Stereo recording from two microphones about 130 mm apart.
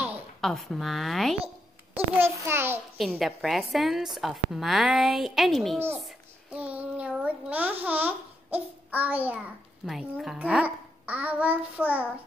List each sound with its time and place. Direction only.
0.4 s a woman's voice: centre (ahead or behind)
2.1 s a child's voice: 20° right (ahead or behind)
3.0 s a woman's voice: centre (ahead or behind)
6.0 s a child's voice: 10° right (ahead or behind)
9.8 s a child's voice: centre (ahead or behind)